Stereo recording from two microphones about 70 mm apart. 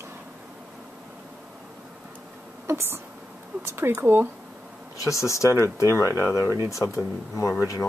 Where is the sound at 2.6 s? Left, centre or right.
Right.